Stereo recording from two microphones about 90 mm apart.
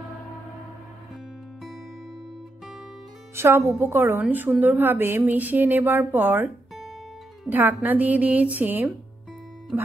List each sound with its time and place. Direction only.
3.3 s speech: 30° right (ahead or behind)
7.8 s speech: 20° right (ahead or behind)